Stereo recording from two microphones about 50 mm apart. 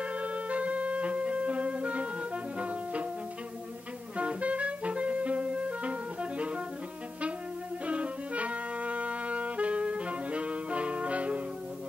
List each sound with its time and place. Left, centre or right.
0.0 s music: right
4.2 s clarinet: right
7.8 s music: right